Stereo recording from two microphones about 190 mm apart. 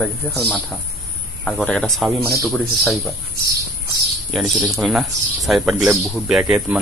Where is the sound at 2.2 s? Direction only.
15° right (ahead or behind).